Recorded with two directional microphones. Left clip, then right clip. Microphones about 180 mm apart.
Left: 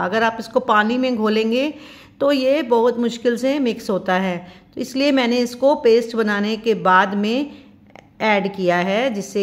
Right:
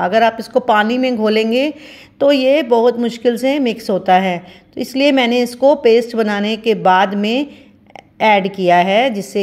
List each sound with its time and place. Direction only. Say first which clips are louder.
0.0 s speech: right 6 dB; 15° right (ahead or behind)